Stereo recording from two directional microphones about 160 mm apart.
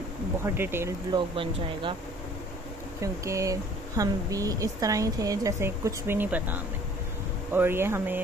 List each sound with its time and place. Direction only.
0.4 s speech: 15° right (ahead or behind)
1.1 s speech: 30° right (ahead or behind)
3.0 s speech: 20° right (ahead or behind)